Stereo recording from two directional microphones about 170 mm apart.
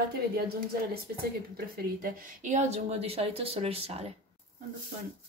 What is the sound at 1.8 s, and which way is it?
Speech, 60° right (ahead or behind).